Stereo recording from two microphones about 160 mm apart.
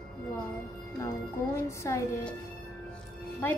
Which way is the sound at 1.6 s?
20° left (ahead or behind).